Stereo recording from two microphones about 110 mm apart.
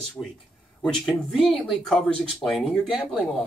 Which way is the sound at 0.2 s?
15° left (ahead or behind).